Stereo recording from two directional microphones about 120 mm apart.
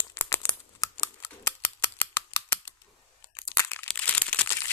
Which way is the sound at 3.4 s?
20° left (ahead or behind).